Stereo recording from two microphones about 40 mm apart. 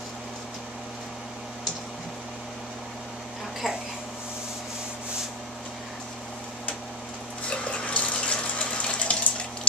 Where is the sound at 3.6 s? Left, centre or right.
Centre.